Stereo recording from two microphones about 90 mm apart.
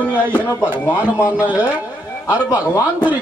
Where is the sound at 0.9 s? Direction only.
15° right (ahead or behind).